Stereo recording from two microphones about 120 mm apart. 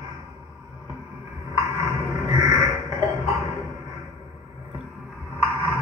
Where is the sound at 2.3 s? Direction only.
25° right (ahead or behind).